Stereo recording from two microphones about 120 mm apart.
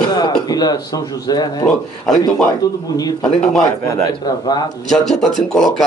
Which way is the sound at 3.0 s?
35° left (ahead or behind).